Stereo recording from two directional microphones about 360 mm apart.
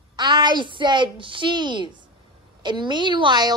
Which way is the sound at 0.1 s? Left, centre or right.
Centre.